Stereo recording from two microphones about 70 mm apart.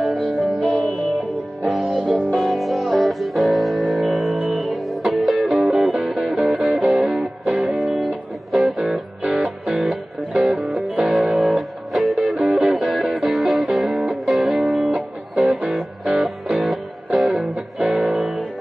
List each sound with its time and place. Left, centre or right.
0.0 s music: centre
1.8 s music: centre
7.4 s music: centre
8.5 s music: centre
9.2 s music: centre
9.7 s music: centre
14.9 s music: centre
15.7 s music: centre
18.1 s music: right